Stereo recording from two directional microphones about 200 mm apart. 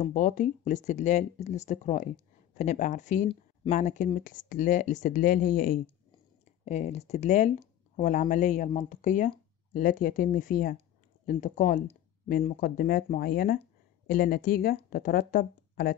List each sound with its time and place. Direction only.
0.0 s speech: 40° left (ahead or behind)